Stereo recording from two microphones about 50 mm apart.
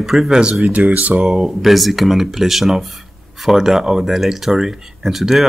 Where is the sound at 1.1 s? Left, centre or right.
Centre.